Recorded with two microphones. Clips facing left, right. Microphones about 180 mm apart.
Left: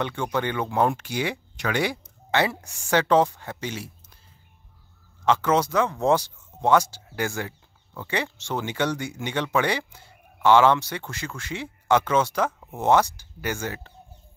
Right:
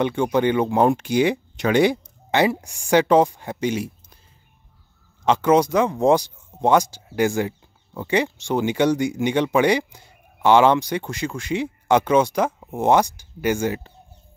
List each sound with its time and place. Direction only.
0.0 s speech: 15° right (ahead or behind)
5.2 s speech: 15° right (ahead or behind)